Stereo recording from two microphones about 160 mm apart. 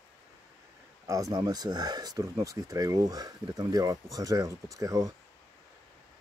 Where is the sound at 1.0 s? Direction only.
20° right (ahead or behind).